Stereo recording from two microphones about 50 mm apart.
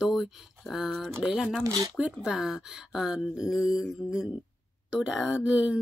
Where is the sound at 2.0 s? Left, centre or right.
Centre.